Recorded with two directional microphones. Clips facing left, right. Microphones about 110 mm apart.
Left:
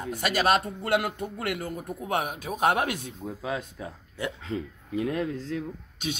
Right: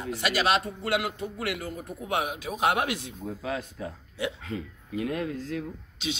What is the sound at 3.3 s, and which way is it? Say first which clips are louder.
Speech: even; 15° left (ahead or behind).